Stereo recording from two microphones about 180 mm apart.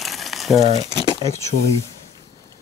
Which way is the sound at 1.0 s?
20° right (ahead or behind).